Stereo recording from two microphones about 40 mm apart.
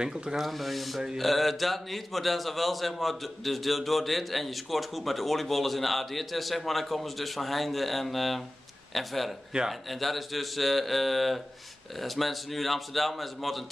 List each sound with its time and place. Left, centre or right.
0.0 s speech: centre
0.4 s a man's voice: centre